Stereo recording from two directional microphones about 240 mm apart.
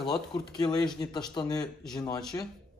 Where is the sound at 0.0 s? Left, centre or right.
Centre.